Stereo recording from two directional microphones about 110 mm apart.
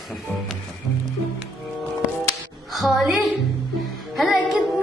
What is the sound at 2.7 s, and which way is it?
Music, centre (ahead or behind).